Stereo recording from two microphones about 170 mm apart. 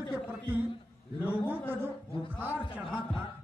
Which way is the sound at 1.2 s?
10° left (ahead or behind).